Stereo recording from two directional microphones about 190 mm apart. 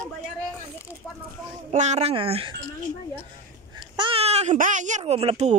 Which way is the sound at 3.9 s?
25° right (ahead or behind).